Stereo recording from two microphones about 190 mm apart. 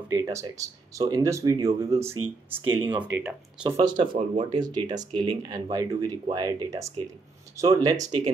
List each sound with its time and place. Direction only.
0.1 s speech: 15° right (ahead or behind)
3.6 s speech: 25° right (ahead or behind)